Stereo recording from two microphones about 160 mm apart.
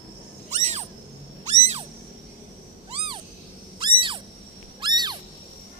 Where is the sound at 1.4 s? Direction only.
40° right (ahead or behind).